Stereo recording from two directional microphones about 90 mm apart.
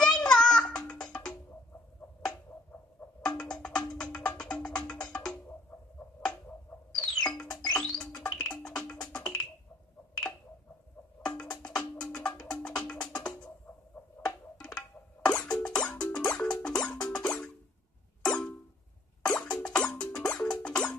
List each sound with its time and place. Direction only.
0.2 s music: 10° left (ahead or behind)
3.2 s music: 10° left (ahead or behind)
5.7 s a sound: 20° left (ahead or behind)
6.7 s chirp tone: 20° left (ahead or behind)
7.2 s music: 10° left (ahead or behind)
11.6 s music: 10° left (ahead or behind)
17.1 s plop: 10° left (ahead or behind)
18.2 s a sound: 5° left (ahead or behind)
19.2 s plop: 10° left (ahead or behind)